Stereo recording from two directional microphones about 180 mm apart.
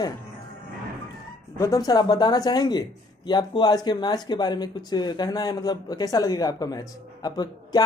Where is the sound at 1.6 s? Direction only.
20° left (ahead or behind).